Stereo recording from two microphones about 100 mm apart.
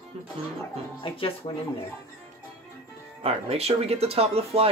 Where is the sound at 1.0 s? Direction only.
60° left (ahead or behind).